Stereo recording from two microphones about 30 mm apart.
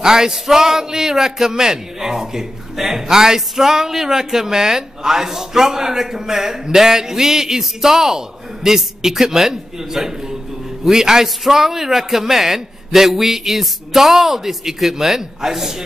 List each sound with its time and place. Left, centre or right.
0.0 s a man's voice: centre